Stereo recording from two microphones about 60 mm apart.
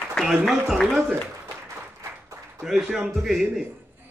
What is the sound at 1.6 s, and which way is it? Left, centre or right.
Applause, right.